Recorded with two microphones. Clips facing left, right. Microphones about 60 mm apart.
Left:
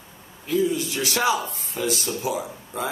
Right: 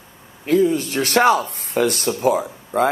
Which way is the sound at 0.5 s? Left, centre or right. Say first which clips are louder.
Right 6 dB; right.